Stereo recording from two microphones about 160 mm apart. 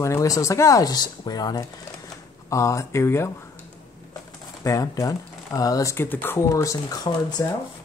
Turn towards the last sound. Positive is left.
turn(degrees=25)  # may be behind; listen again after turning